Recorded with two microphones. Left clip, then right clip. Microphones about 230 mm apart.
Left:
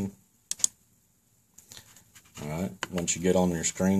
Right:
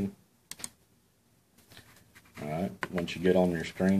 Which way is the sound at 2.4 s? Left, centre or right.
Left.